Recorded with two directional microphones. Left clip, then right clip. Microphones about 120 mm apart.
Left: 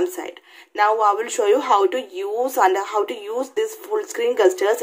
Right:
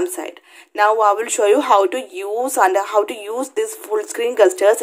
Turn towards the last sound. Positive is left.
turn(degrees=-35)  # may be behind; listen again after turning